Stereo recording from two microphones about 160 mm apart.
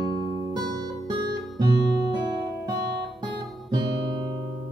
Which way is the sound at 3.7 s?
30° right (ahead or behind).